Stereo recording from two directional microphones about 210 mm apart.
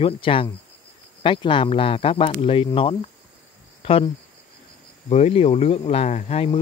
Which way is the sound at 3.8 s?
30° left (ahead or behind).